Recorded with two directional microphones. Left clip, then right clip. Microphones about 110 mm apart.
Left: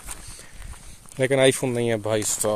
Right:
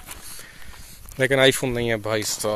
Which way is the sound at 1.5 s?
15° left (ahead or behind).